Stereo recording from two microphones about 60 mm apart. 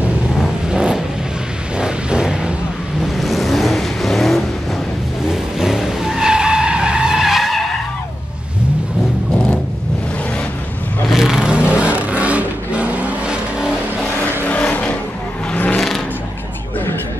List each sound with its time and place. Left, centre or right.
0.7 s vehicle: centre
1.8 s a sound: centre
3.0 s vehicle: centre
5.3 s skidding: centre
11.1 s vehicle: centre; by 13.4 s right
14.5 s vehicle: left